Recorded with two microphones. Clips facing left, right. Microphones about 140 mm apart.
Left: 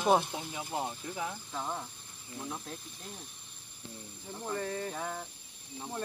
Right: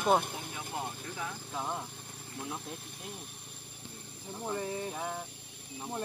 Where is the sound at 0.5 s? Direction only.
20° left (ahead or behind).